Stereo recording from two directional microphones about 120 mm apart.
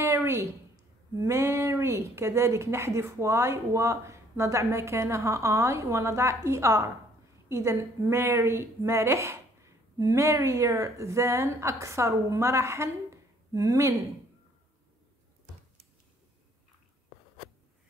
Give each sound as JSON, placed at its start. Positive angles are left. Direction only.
{"t": 0.0, "sound": "a woman's voice", "side_deg": -20}